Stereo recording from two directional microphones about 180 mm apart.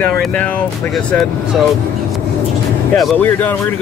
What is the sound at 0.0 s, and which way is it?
Speech, 5° left (ahead or behind).